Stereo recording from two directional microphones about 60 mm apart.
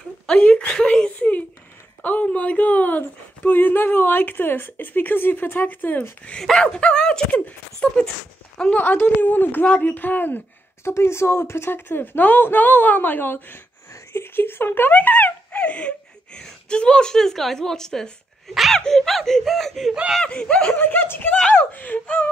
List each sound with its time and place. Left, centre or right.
0.3 s a woman's voice: centre
1.1 s a sound: left
2.0 s speech: left
6.4 s a woman's voice: centre
8.7 s speech: left
10.8 s a woman's voice: left; by 19.9 s centre
19.9 s speech: centre
20.2 s a woman's voice: centre
20.7 s speech: left